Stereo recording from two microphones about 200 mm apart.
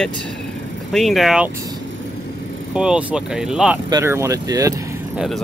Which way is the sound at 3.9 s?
15° right (ahead or behind).